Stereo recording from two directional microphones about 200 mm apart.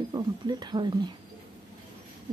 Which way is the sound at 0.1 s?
20° right (ahead or behind).